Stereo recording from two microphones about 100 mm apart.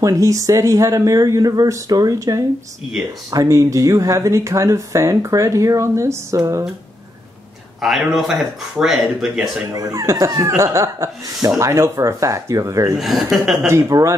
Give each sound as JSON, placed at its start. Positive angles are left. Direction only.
{"t": 0.0, "sound": "speech", "side_deg": -35}
{"t": 7.8, "sound": "speech", "side_deg": 0}
{"t": 9.8, "sound": "speech", "side_deg": -35}
{"t": 13.0, "sound": "speech", "side_deg": 0}
{"t": 13.7, "sound": "speech", "side_deg": -30}